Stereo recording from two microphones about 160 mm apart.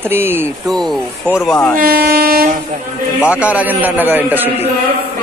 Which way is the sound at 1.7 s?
65° right (ahead or behind).